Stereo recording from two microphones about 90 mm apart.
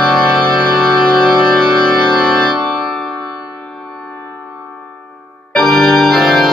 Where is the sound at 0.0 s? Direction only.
Centre (ahead or behind).